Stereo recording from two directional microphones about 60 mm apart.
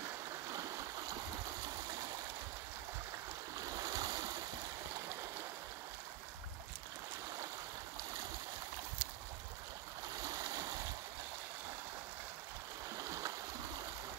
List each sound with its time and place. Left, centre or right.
0.5 s stream: right
3.5 s stream: right
10.2 s stream: right
12.9 s a sound: right